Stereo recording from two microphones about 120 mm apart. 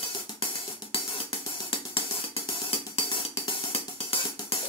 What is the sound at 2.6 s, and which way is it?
Hi-hat, 50° left (ahead or behind).